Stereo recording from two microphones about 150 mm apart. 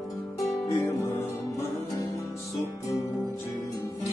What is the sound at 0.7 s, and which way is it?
Music, 20° left (ahead or behind).